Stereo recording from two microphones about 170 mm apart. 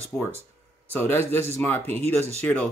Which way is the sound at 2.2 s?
40° right (ahead or behind).